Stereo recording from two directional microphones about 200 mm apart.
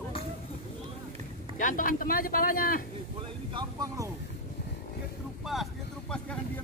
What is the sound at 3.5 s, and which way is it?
Speech, 20° right (ahead or behind).